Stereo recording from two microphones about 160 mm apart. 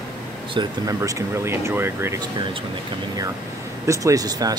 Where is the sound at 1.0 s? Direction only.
20° right (ahead or behind).